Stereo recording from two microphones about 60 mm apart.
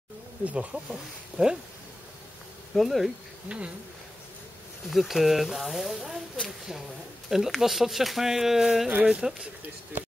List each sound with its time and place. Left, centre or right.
0.4 s speech: right
2.7 s speech: centre
3.4 s insect: centre
4.8 s speech: centre
7.2 s speech: centre
9.9 s speech: right